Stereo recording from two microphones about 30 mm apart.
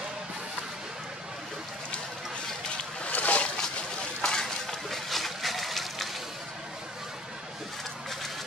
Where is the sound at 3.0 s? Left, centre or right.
Left.